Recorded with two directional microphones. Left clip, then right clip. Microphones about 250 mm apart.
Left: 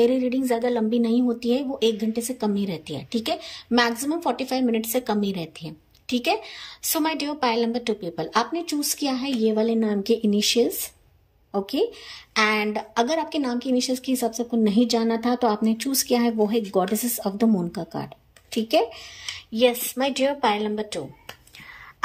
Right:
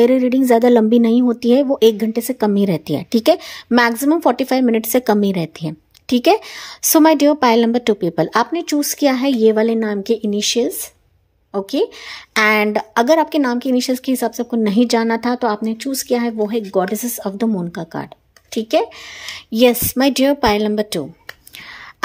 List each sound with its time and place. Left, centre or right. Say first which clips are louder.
0.0 s a woman's voice: right 8 dB; centre
19.5 s speech: right 7 dB; right